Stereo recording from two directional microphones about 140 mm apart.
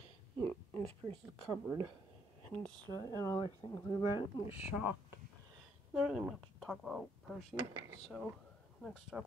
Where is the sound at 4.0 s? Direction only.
35° left (ahead or behind).